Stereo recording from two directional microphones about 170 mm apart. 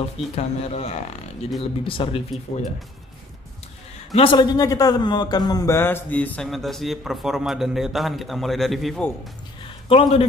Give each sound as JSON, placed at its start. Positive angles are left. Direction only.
{"t": 0.4, "sound": "speech", "side_deg": 40}
{"t": 4.1, "sound": "a man's voice", "side_deg": 30}
{"t": 9.8, "sound": "speech", "side_deg": 35}